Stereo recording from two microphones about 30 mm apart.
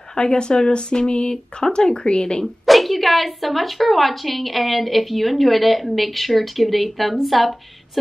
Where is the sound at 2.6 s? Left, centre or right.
Centre.